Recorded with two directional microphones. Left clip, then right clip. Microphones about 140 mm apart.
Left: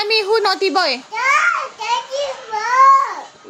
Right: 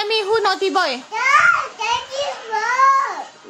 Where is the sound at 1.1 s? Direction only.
25° right (ahead or behind).